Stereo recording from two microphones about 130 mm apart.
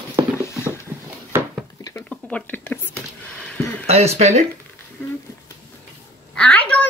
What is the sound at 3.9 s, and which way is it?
Speech, 55° right (ahead or behind).